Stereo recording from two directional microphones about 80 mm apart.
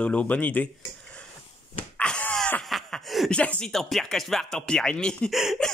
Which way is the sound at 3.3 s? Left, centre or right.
Centre.